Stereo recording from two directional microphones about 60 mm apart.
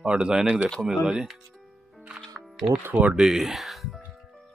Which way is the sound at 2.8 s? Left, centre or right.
Right.